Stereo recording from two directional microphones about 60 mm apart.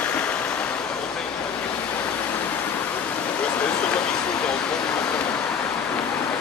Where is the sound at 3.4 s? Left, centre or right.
Left.